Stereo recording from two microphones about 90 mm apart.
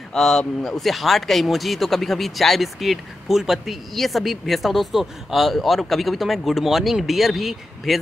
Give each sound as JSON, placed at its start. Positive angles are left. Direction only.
{"t": 0.1, "sound": "speech", "side_deg": 5}